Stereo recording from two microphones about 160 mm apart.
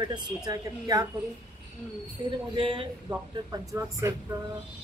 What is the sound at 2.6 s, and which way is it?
Speech, 30° right (ahead or behind).